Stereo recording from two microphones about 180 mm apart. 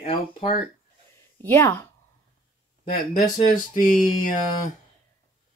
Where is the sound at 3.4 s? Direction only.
50° left (ahead or behind).